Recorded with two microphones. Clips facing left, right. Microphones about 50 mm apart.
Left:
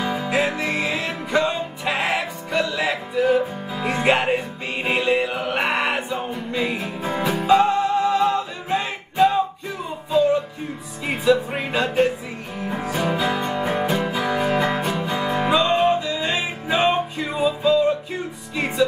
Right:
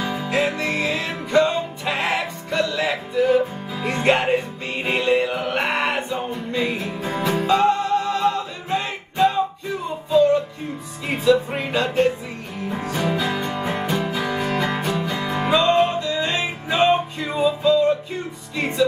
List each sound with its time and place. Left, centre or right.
0.0 s music: centre
11.1 s music: centre
14.9 s music: left
15.2 s music: centre